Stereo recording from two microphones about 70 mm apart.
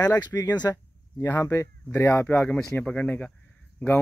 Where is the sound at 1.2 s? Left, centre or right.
Left.